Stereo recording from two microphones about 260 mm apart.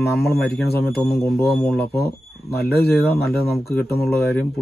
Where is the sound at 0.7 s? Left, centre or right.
Left.